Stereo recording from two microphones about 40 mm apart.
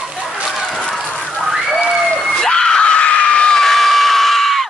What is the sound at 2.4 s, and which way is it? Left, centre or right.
Screaming, centre.